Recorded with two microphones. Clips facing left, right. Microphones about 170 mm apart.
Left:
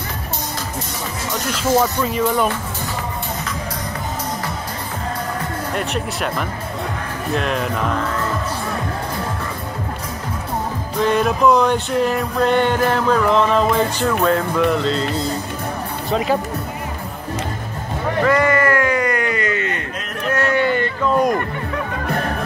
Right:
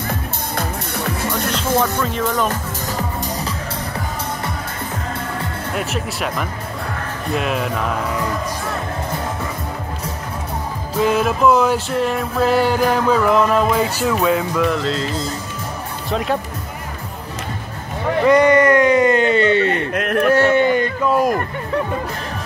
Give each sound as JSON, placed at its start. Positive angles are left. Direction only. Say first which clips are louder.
{"t": 0.6, "sound": "music", "louder": "right 3 dB", "side_deg": -60}
{"t": 1.6, "sound": "speech", "louder": "left 3 dB", "side_deg": 10}
{"t": 5.8, "sound": "music", "louder": "right 1 dB", "side_deg": 0}
{"t": 11.0, "sound": "music", "louder": "even", "side_deg": -5}
{"t": 16.1, "sound": "music", "louder": "left 2 dB", "side_deg": 0}
{"t": 18.2, "sound": "a sound", "louder": "right 4 dB", "side_deg": -20}
{"t": 20.0, "sound": "a sound", "louder": "right 11 dB", "side_deg": -60}
{"t": 20.3, "sound": "a sound", "louder": "even", "side_deg": -25}
{"t": 21.1, "sound": "speech", "louder": "even", "side_deg": -5}